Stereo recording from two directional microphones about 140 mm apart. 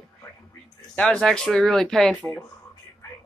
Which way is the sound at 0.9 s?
5° left (ahead or behind).